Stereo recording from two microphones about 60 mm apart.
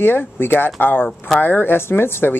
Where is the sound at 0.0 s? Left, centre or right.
Left.